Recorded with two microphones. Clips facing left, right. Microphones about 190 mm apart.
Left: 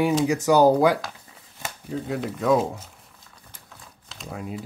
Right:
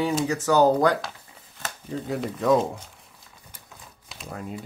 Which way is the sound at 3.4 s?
10° right (ahead or behind).